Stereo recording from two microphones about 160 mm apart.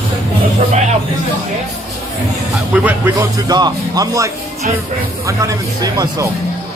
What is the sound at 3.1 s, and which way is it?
Speech, 25° right (ahead or behind).